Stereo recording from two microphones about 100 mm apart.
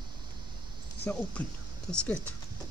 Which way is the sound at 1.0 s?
15° left (ahead or behind).